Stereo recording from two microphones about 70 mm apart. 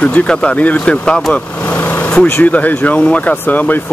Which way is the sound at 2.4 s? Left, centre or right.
Left.